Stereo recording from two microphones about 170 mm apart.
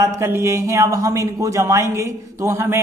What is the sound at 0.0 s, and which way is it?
A man's voice, 15° right (ahead or behind).